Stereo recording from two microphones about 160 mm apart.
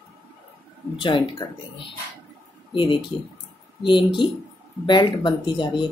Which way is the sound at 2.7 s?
30° left (ahead or behind).